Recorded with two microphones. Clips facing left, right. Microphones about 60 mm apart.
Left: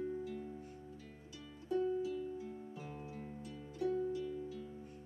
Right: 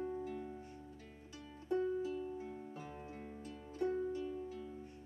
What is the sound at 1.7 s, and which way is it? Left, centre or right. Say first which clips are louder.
Music: left 1 dB; right.